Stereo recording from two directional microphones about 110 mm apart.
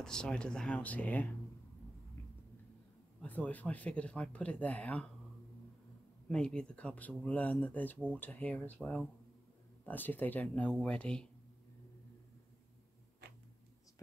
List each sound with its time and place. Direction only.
0.0 s speech: 5° left (ahead or behind)
3.2 s speech: 15° left (ahead or behind)
6.2 s speech: 10° left (ahead or behind)